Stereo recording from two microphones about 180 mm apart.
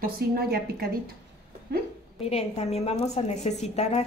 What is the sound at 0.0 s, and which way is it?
Speech, 55° right (ahead or behind).